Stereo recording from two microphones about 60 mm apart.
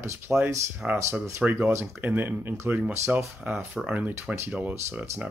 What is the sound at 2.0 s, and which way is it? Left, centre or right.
Speech, right.